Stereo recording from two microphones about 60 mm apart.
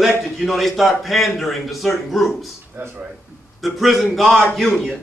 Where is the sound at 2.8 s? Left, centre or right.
Right.